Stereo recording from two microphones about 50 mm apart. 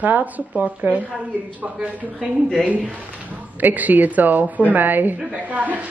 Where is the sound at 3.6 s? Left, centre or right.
Right.